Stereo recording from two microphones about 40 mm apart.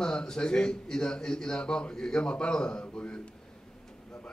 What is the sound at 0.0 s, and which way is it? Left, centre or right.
A man's voice, left.